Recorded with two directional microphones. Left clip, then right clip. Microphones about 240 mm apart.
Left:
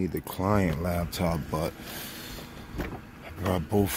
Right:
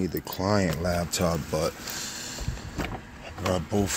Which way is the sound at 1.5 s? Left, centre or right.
Centre.